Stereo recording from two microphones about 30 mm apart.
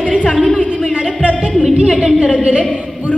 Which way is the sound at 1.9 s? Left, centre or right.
Centre.